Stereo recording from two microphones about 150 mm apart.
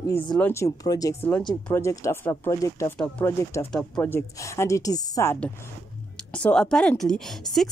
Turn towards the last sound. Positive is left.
turn(degrees=0)  # may be behind; listen again after turning